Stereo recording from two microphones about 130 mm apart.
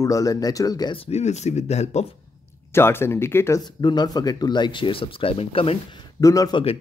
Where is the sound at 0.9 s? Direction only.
50° left (ahead or behind).